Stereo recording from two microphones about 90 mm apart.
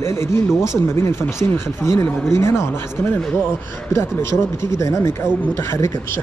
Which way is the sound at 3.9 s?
30° left (ahead or behind).